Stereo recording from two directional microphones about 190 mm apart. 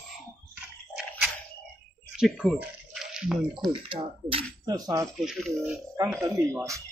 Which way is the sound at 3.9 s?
30° right (ahead or behind).